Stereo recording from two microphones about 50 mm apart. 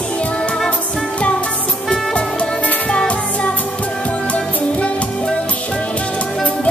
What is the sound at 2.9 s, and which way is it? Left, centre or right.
Music, centre.